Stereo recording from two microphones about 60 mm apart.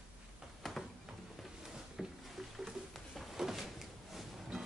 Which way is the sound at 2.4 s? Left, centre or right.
Centre.